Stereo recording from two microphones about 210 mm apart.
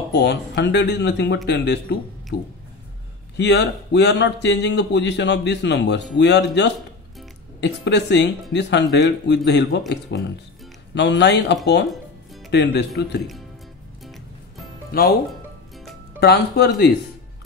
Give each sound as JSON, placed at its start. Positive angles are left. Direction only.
{"t": 0.1, "sound": "speech", "side_deg": 55}
{"t": 3.3, "sound": "speech", "side_deg": 55}
{"t": 14.9, "sound": "speech", "side_deg": 45}
{"t": 16.2, "sound": "speech", "side_deg": 50}